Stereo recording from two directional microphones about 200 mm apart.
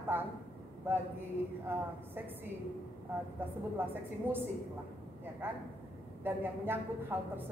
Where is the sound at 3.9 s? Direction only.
10° right (ahead or behind).